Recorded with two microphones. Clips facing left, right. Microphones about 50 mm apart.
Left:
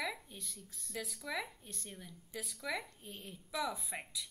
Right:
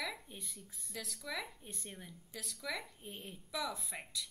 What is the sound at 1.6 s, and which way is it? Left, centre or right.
Speech, centre.